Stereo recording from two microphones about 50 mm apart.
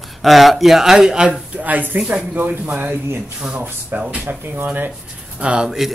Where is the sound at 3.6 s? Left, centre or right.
Right.